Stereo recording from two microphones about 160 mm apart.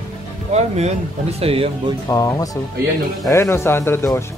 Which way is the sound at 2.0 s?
20° left (ahead or behind).